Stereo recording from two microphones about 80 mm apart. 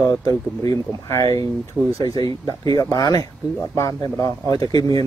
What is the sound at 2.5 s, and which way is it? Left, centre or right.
Speech, left.